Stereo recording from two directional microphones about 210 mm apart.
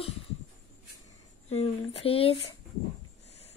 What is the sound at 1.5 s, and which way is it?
Speech, 30° left (ahead or behind).